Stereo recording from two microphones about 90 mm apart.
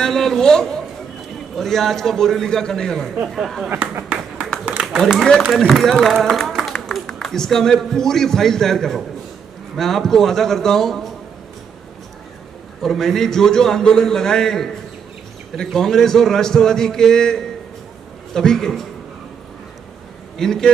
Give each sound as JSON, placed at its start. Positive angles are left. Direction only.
{"t": 0.0, "sound": "a man's voice", "side_deg": 5}
{"t": 3.6, "sound": "speech", "side_deg": -15}
{"t": 4.1, "sound": "clapping", "side_deg": -15}
{"t": 4.8, "sound": "a man's voice", "side_deg": 0}
{"t": 12.8, "sound": "a man's voice", "side_deg": 5}
{"t": 20.3, "sound": "a man's voice", "side_deg": 5}